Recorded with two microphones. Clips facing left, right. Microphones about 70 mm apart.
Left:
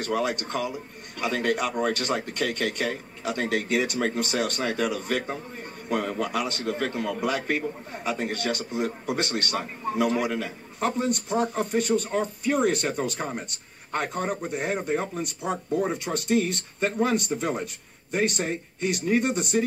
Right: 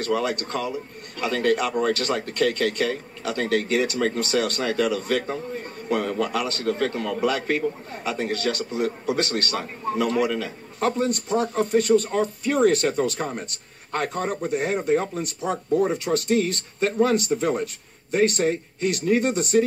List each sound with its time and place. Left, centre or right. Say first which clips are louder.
0.2 s a man's voice: right 1 dB; right
16.0 s a man's voice: right 3 dB; right